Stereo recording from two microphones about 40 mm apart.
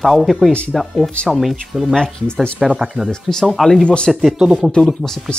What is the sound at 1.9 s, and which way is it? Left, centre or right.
Speech, left.